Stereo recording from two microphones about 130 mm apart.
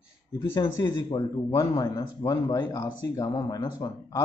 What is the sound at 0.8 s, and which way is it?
Speech, 30° left (ahead or behind).